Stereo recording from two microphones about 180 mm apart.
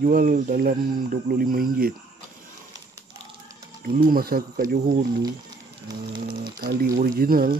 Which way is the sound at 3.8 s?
55° right (ahead or behind).